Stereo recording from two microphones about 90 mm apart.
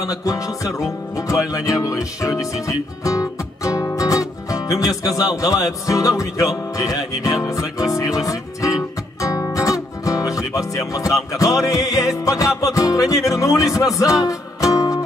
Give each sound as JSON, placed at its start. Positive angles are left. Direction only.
{"t": 0.0, "sound": "music", "side_deg": 40}